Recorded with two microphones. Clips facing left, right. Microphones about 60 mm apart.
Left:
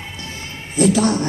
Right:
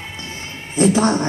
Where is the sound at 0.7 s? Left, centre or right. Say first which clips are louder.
Even; right.